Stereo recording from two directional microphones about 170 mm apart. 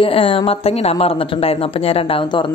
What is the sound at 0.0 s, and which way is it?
A woman's voice, 30° left (ahead or behind).